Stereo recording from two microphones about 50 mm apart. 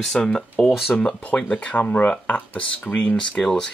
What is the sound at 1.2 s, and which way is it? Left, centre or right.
Speech, left.